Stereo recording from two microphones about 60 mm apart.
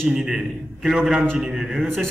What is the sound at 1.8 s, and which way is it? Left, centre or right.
Speech, centre.